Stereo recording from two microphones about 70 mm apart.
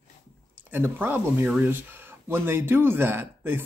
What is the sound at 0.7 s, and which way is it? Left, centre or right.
Speech, right.